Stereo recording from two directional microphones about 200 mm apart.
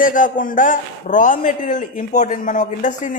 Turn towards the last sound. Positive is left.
turn(degrees=40)  # may be behind; listen again after turning